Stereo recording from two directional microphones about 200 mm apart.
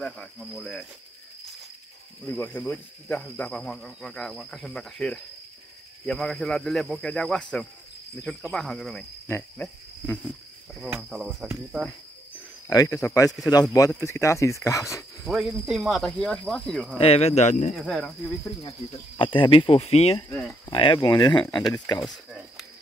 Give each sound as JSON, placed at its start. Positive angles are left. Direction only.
{"t": 0.0, "sound": "speech", "side_deg": 5}
{"t": 2.2, "sound": "speech", "side_deg": 10}
{"t": 10.8, "sound": "speech", "side_deg": -5}
{"t": 12.6, "sound": "speech", "side_deg": 15}
{"t": 15.2, "sound": "speech", "side_deg": 0}
{"t": 17.0, "sound": "speech", "side_deg": 30}
{"t": 17.7, "sound": "speech", "side_deg": 0}
{"t": 18.6, "sound": "speech", "side_deg": 25}
{"t": 20.2, "sound": "speech", "side_deg": 10}
{"t": 20.6, "sound": "speech", "side_deg": 25}